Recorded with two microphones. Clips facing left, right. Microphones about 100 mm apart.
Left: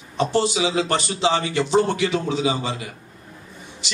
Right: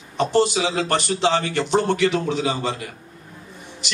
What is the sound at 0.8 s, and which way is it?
A man's voice, 55° right (ahead or behind).